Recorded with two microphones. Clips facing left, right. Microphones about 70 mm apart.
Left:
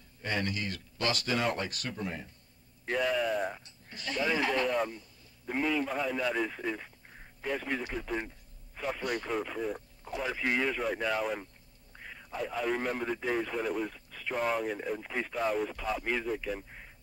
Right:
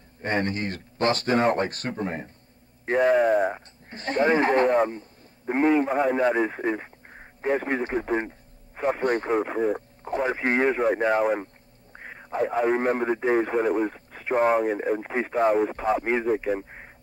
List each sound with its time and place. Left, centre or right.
0.2 s speech: right